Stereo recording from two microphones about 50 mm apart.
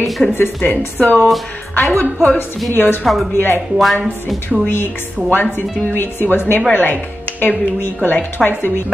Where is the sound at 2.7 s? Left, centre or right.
Left.